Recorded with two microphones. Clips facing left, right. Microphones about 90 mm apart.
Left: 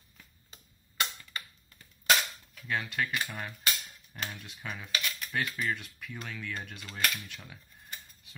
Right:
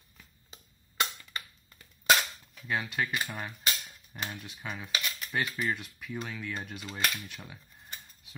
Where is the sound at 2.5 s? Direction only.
5° right (ahead or behind).